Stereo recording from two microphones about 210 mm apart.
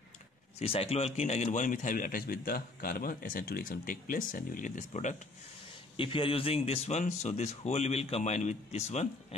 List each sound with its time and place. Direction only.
0.6 s a man's voice: 30° left (ahead or behind)
5.9 s a man's voice: 25° left (ahead or behind)